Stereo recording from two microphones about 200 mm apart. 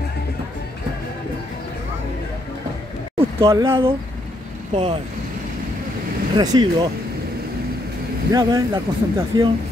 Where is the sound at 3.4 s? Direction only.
20° right (ahead or behind).